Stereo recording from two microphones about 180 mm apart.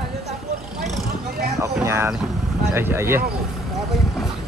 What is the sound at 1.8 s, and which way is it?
Speech, 15° right (ahead or behind).